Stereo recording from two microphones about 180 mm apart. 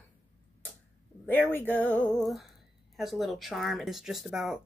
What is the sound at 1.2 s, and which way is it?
Speech, 10° left (ahead or behind).